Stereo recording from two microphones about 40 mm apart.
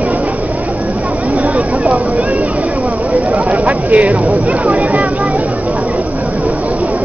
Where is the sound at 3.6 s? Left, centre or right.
Right.